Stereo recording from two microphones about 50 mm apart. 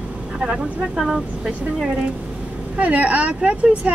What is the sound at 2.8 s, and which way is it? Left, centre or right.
Speech, right.